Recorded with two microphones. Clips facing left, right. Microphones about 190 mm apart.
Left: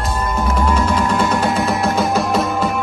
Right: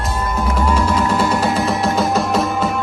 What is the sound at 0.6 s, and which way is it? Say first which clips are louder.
Music: right 1 dB; centre (ahead or behind).